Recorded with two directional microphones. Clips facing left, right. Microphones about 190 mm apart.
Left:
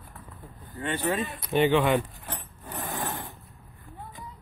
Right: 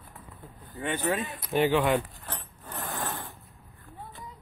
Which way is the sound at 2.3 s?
15° left (ahead or behind).